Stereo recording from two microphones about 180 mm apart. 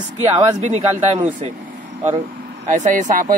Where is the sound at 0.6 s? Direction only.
35° right (ahead or behind).